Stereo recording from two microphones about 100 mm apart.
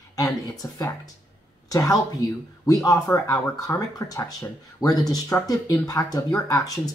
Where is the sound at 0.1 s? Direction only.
35° left (ahead or behind).